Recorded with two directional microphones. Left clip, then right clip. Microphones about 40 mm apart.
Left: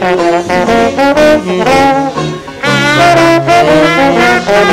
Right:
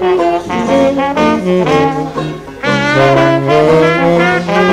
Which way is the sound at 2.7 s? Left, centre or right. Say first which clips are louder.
Left 3 dB; centre.